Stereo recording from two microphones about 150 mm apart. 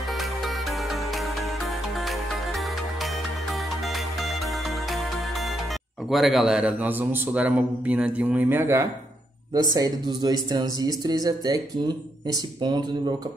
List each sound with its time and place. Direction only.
0.2 s music: centre (ahead or behind)
6.0 s a man's voice: centre (ahead or behind); by 13.1 s 30° right (ahead or behind)